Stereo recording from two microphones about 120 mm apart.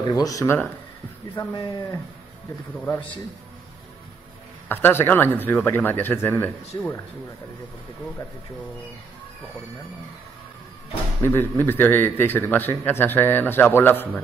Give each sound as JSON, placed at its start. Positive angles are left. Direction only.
{"t": 0.0, "sound": "speech", "side_deg": 30}
{"t": 2.7, "sound": "a man's voice", "side_deg": 15}
{"t": 4.6, "sound": "a man's voice", "side_deg": 15}
{"t": 11.2, "sound": "a man's voice", "side_deg": 20}